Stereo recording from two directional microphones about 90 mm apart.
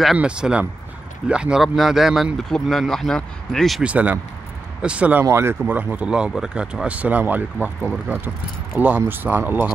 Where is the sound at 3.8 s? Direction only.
15° right (ahead or behind).